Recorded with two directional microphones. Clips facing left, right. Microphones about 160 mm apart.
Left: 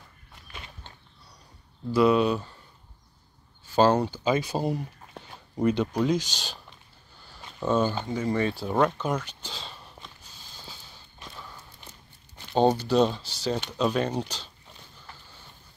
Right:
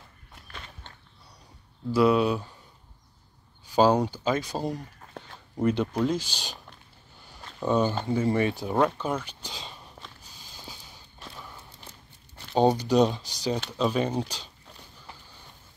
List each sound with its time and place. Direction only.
0.5 s walk: 5° left (ahead or behind)
1.9 s speech: 5° right (ahead or behind)
3.7 s speech: 10° right (ahead or behind)
4.2 s speech: 5° left (ahead or behind)
7.6 s speech: 15° right (ahead or behind)
8.1 s speech: 25° right (ahead or behind)
8.6 s speech: 5° right (ahead or behind)
12.5 s speech: 10° right (ahead or behind)